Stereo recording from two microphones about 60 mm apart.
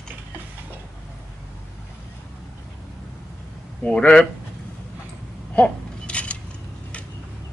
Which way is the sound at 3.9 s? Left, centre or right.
Centre.